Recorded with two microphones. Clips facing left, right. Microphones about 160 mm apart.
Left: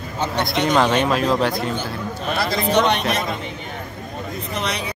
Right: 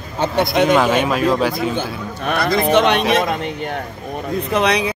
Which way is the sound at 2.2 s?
55° right (ahead or behind).